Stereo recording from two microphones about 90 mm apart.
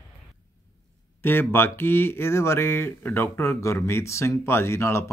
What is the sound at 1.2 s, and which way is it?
Speech, 25° left (ahead or behind).